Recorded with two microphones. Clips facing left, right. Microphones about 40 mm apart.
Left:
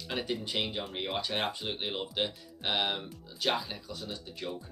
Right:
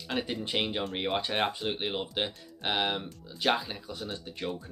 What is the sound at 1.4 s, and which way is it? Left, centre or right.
Speech, centre.